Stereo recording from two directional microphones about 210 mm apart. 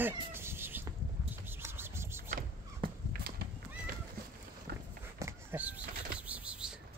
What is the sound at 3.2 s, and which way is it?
Horse, 45° right (ahead or behind).